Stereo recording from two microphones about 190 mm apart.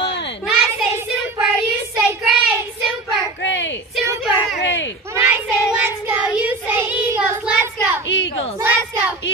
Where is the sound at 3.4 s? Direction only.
70° left (ahead or behind).